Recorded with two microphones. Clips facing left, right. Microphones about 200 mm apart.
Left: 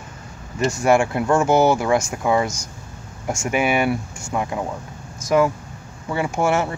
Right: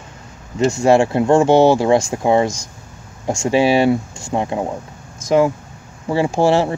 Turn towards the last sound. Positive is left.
turn(degrees=-30)  # may be behind; listen again after turning